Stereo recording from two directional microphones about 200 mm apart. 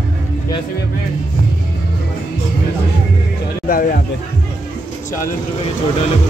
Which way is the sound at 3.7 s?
45° left (ahead or behind).